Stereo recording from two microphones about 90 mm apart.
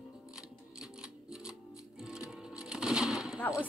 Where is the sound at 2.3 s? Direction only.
5° right (ahead or behind).